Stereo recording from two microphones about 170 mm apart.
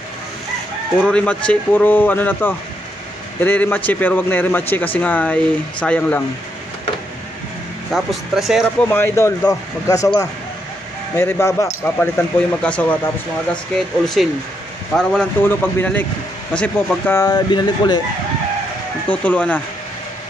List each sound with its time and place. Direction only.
1.0 s speech: 5° left (ahead or behind)
7.9 s speech: centre (ahead or behind)
8.8 s speech: 15° left (ahead or behind)
14.2 s a man's voice: centre (ahead or behind); by 18.0 s 25° left (ahead or behind)
19.0 s speech: 10° left (ahead or behind)